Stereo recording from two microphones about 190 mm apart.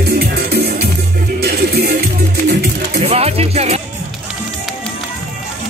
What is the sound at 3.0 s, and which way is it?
Music, 30° right (ahead or behind).